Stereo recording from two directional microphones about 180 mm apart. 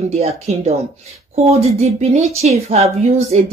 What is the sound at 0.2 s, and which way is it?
A woman's voice, 35° right (ahead or behind).